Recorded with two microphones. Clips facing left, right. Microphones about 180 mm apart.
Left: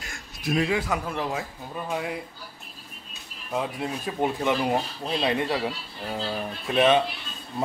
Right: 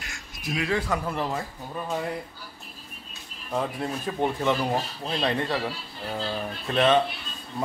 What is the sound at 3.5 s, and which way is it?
Speech, 5° left (ahead or behind).